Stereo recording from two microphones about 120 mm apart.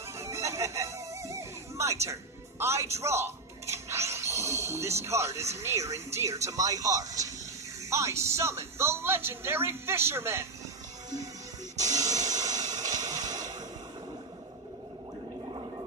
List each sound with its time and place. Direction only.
0.2 s music: 25° right (ahead or behind)
2.6 s a man's voice: 25° right (ahead or behind)
3.0 s a sound: 20° right (ahead or behind)
5.0 s a man's voice: 25° right (ahead or behind)
11.7 s hiss: 30° right (ahead or behind)
12.7 s a sound: 30° right (ahead or behind)